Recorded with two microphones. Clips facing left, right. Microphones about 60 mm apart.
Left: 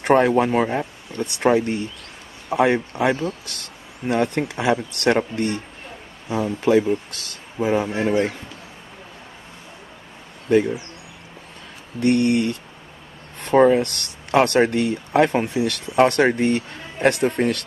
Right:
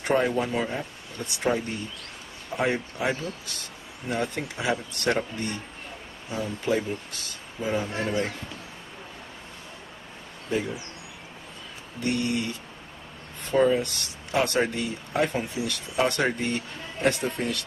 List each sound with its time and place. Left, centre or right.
0.0 s speech: left
10.5 s speech: left
12.0 s speech: left